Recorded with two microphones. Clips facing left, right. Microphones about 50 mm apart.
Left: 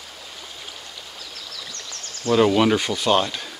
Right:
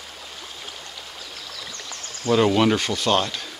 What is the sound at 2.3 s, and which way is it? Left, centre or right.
Speech, centre.